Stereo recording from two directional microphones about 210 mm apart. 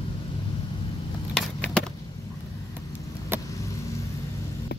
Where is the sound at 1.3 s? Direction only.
5° left (ahead or behind).